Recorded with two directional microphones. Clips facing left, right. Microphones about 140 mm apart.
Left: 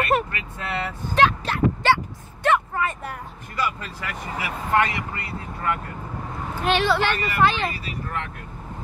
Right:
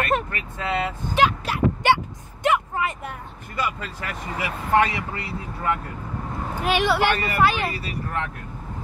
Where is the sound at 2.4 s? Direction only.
15° right (ahead or behind).